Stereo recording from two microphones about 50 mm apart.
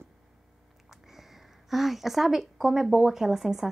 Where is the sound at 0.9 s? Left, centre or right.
Centre.